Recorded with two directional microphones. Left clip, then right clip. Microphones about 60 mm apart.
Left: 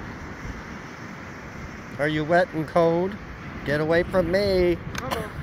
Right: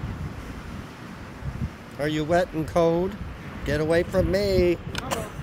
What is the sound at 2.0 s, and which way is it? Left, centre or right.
Speech, right.